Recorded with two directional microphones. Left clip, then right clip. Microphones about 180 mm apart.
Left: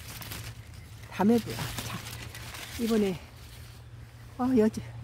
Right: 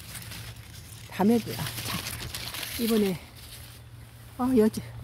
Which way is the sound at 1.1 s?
20° right (ahead or behind).